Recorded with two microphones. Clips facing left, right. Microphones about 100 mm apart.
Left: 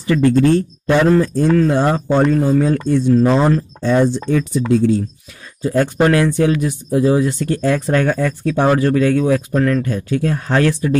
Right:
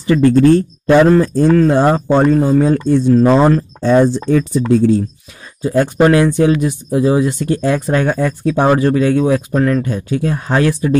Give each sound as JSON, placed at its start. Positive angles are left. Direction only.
{"t": 0.0, "sound": "a man's voice", "side_deg": -35}
{"t": 3.2, "sound": "speech", "side_deg": -55}
{"t": 3.8, "sound": "speech", "side_deg": -40}
{"t": 5.7, "sound": "speech", "side_deg": -15}